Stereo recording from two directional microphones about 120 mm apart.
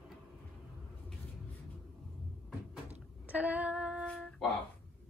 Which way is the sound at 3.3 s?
15° right (ahead or behind).